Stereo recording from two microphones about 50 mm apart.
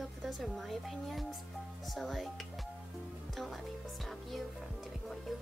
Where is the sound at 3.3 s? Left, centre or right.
Centre.